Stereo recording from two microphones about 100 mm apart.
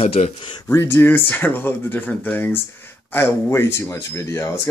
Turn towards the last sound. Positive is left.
turn(degrees=30)  # may be behind; listen again after turning